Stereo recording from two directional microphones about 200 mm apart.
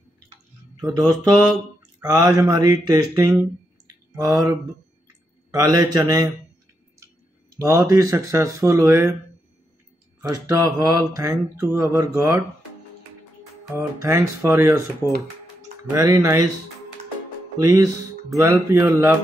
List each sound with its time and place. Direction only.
2.0 s speech: 20° right (ahead or behind)
7.5 s speech: 15° right (ahead or behind)
10.2 s speech: 20° right (ahead or behind)
13.7 s speech: 15° right (ahead or behind)
17.6 s speech: 15° right (ahead or behind)